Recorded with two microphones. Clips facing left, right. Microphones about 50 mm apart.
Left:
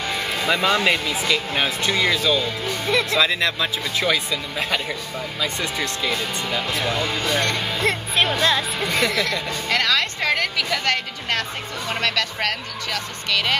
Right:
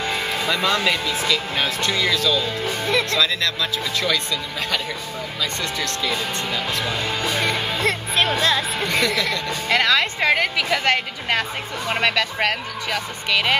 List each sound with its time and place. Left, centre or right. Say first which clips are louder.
0.5 s speech: left 2 dB; centre
2.6 s speech: even; centre
3.1 s speech: left 1 dB; left
7.1 s speech: even; centre
9.7 s speech: right 3 dB; centre